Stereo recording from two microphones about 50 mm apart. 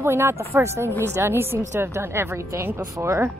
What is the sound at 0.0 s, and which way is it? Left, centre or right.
A woman's voice, right.